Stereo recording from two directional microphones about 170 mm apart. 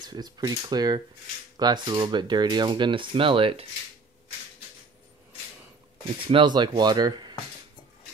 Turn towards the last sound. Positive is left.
turn(degrees=-25)  # may be behind; listen again after turning